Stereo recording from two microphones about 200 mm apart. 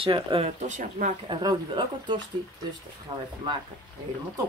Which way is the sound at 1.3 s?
20° right (ahead or behind).